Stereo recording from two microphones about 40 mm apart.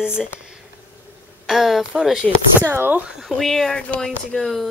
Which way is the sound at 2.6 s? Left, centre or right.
Right.